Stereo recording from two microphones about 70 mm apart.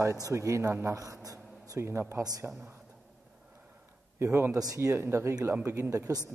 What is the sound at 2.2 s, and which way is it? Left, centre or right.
Speech, right.